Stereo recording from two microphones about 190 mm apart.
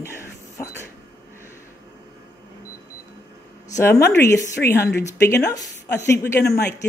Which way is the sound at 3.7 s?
15° left (ahead or behind).